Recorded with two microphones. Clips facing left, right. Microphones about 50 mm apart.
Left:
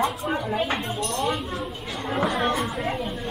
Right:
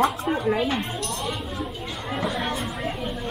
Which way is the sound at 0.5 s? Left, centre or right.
Left.